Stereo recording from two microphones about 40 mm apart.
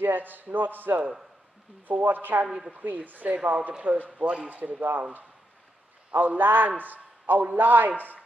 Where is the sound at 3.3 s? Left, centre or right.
Right.